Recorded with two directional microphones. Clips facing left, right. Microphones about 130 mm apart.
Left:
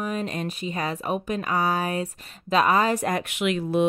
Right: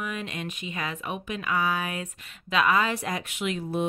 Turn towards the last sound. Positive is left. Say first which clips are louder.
# left 6 dB
turn(degrees=90)